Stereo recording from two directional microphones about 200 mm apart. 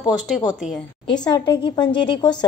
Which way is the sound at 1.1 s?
20° left (ahead or behind).